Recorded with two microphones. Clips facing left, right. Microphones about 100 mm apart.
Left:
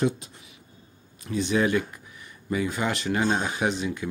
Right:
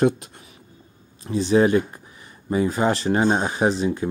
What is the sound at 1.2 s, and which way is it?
Speech, 35° right (ahead or behind).